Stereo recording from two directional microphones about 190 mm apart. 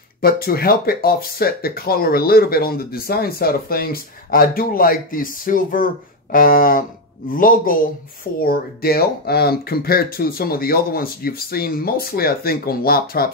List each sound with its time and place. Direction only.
0.2 s speech: 50° left (ahead or behind)